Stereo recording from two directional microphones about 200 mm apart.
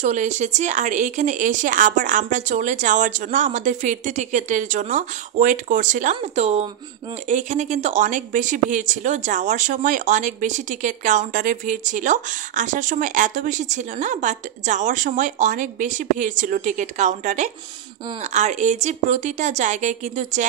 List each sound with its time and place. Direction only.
0.0 s speech: 35° right (ahead or behind)